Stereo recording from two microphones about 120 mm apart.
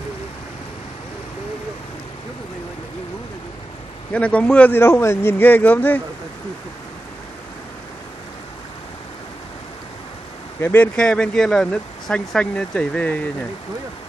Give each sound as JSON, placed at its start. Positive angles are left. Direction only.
{"t": 4.1, "sound": "speech", "side_deg": 10}
{"t": 10.6, "sound": "speech", "side_deg": 20}
{"t": 11.0, "sound": "speech", "side_deg": 5}